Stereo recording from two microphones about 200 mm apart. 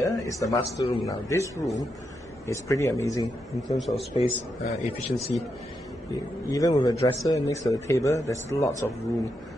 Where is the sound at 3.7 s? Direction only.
Centre (ahead or behind).